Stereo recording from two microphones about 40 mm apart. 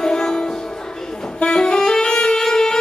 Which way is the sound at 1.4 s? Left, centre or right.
Left.